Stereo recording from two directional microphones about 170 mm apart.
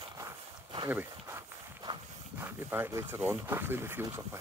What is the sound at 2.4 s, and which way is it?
Speech, 10° right (ahead or behind).